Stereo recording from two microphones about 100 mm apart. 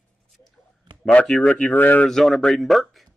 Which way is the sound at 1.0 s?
15° left (ahead or behind).